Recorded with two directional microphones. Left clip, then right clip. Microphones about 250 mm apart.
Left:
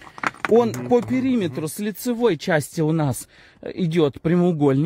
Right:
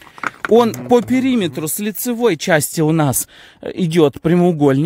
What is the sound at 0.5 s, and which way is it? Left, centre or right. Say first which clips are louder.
Speech: right 5 dB; right.